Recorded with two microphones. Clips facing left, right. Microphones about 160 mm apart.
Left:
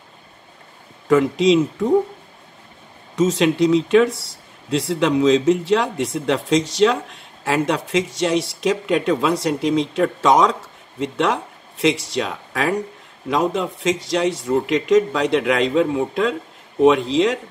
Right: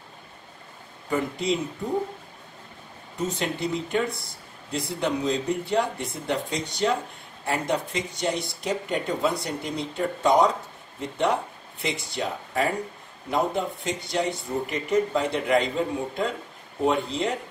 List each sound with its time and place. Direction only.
1.0 s speech: 90° left
3.2 s speech: 90° left